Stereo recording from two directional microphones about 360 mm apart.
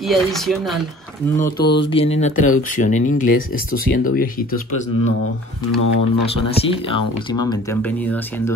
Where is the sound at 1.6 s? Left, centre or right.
Left.